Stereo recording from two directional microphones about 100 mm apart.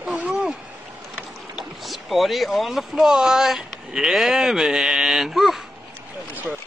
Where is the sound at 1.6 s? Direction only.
Centre (ahead or behind).